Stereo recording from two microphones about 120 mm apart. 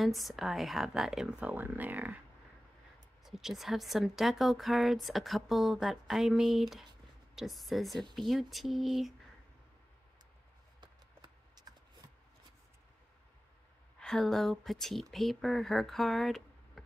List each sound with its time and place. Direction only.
0.0 s speech: centre (ahead or behind)
3.3 s speech: 5° right (ahead or behind)
10.8 s a sound: 35° right (ahead or behind)
13.9 s speech: 5° left (ahead or behind)